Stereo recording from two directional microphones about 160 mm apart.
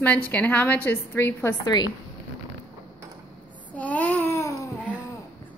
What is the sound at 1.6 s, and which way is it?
Speech, 25° left (ahead or behind).